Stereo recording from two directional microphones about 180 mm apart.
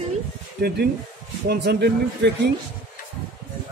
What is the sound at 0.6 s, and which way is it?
Speech, 55° right (ahead or behind).